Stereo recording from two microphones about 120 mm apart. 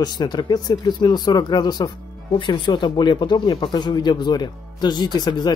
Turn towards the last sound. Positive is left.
turn(degrees=35)  # may be behind; listen again after turning